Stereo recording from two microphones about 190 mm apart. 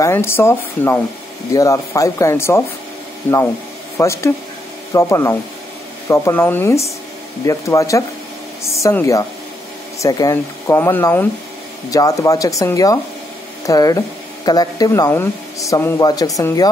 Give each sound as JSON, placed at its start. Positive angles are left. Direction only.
{"t": 0.0, "sound": "speech", "side_deg": 15}